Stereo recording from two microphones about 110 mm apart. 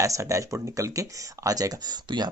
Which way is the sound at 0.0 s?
30° right (ahead or behind).